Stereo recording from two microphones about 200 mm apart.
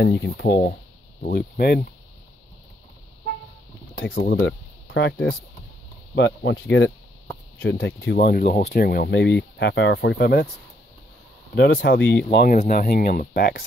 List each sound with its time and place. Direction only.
0.0 s speech: 60° left (ahead or behind)
4.0 s speech: 55° left (ahead or behind)
4.4 s speech: 65° left (ahead or behind)
11.5 s speech: 60° left (ahead or behind)
12.3 s speech: 50° left (ahead or behind)